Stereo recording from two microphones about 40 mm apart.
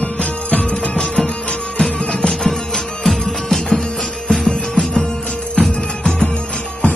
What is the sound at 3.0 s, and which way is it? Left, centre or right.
Music, centre.